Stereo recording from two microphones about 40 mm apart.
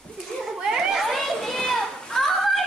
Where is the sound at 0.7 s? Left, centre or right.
Centre.